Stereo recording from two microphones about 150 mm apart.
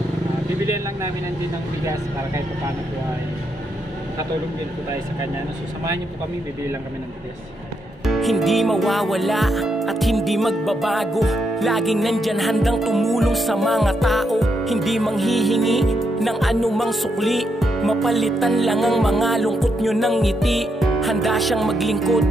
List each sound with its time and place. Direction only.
8.0 s music: centre (ahead or behind)